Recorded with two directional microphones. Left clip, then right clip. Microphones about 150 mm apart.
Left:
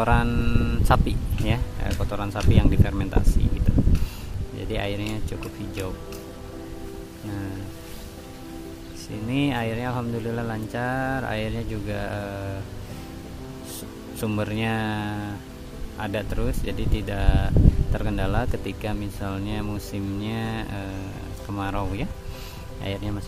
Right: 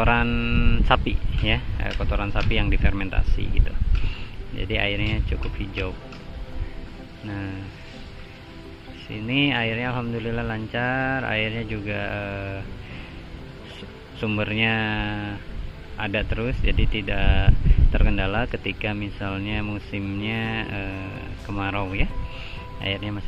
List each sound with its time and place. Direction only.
0.0 s speech: 15° left (ahead or behind)
4.6 s speech: 20° left (ahead or behind)
9.3 s speech: 20° left (ahead or behind)
14.2 s speech: 15° left (ahead or behind)
16.6 s speech: 90° left
17.1 s speech: 15° left (ahead or behind)